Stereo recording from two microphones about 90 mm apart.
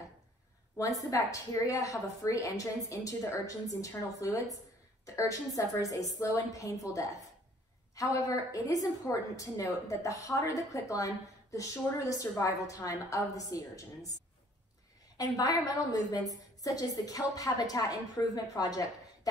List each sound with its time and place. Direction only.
0.7 s a woman's voice: 40° left (ahead or behind)
5.6 s a woman's voice: 40° left (ahead or behind)
15.1 s a woman's voice: 45° left (ahead or behind)